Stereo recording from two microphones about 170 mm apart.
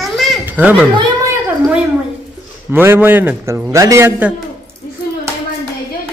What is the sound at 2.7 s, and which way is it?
A man's voice, 10° right (ahead or behind).